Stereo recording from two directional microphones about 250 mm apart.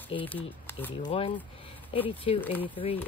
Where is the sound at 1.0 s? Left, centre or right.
Left.